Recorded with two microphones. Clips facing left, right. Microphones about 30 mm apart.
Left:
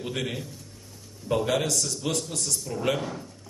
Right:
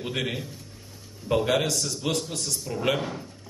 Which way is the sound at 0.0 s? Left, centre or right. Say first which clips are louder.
Right 2 dB; right.